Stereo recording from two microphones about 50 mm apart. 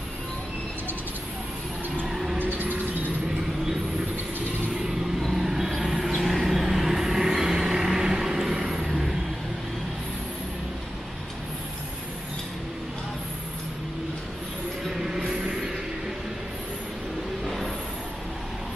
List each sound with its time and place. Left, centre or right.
2.0 s a sound: centre
2.3 s music: right
4.8 s vehicle: centre
14.9 s train: centre